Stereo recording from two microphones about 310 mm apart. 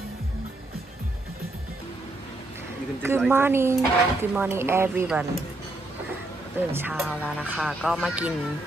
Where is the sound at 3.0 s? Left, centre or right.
Centre.